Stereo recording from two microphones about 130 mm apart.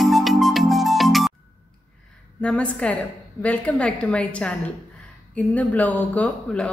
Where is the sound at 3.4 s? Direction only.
10° left (ahead or behind).